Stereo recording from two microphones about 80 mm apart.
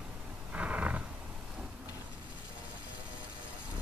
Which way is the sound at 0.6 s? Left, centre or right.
Centre.